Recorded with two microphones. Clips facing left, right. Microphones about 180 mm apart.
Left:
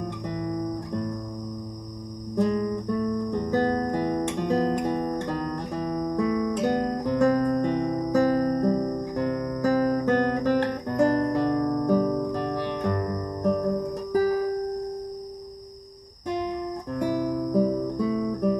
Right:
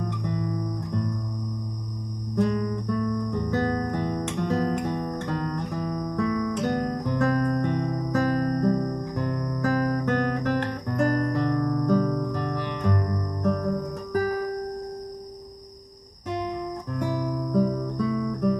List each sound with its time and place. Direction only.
2.3 s music: 15° left (ahead or behind)
6.5 s guitar: 15° left (ahead or behind)
7.0 s music: 15° left (ahead or behind)
9.1 s guitar: 15° left (ahead or behind)
16.9 s guitar: 15° left (ahead or behind)